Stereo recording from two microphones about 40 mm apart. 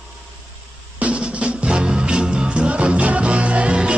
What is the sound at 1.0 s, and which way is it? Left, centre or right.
Music, right.